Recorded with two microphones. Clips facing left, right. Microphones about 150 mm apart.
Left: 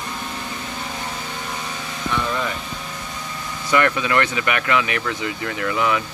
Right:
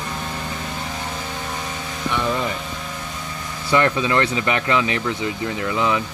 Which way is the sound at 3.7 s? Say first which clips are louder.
Right 1 dB; 25° right (ahead or behind).